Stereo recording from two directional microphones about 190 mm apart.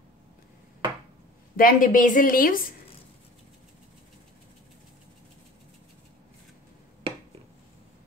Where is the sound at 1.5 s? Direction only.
45° left (ahead or behind).